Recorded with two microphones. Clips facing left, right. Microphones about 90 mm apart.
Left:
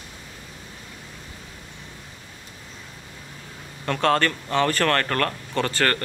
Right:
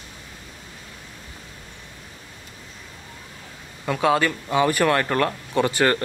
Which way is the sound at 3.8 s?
10° right (ahead or behind).